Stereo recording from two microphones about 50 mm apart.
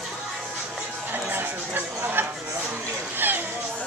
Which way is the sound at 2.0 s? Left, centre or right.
Right.